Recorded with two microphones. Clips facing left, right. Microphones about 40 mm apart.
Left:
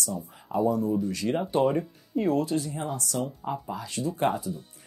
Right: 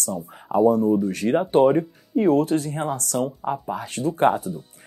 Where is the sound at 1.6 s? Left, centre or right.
Right.